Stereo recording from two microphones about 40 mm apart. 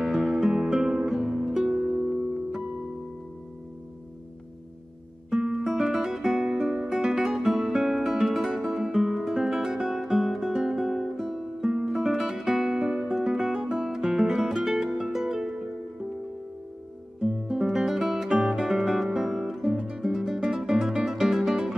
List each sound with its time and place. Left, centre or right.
0.2 s music: centre
5.3 s music: centre
5.6 s music: centre
9.9 s guitar: centre
11.6 s music: centre
12.8 s music: right
13.1 s guitar: centre
13.7 s music: centre
17.2 s music: centre